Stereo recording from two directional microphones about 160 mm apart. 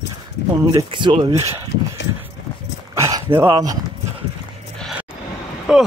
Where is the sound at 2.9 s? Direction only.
20° right (ahead or behind).